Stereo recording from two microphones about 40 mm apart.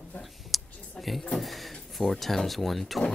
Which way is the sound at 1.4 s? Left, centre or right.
Centre.